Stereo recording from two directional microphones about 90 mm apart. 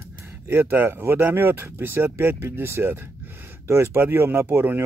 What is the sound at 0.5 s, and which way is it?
Speech, 25° right (ahead or behind).